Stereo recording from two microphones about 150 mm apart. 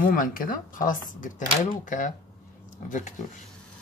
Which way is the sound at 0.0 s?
65° left (ahead or behind).